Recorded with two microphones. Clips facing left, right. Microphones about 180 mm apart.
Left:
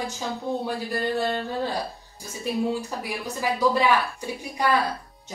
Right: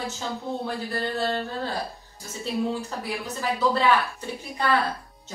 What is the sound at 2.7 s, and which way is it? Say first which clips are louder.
A woman's voice: even; 15° left (ahead or behind).